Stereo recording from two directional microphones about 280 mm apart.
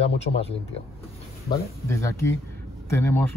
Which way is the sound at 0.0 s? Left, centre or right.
Left.